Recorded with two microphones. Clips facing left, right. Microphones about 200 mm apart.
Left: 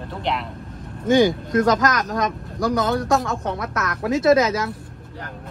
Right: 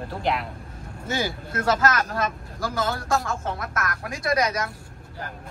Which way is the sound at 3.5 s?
20° left (ahead or behind).